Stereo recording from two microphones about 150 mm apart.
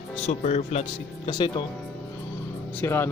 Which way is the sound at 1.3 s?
30° left (ahead or behind).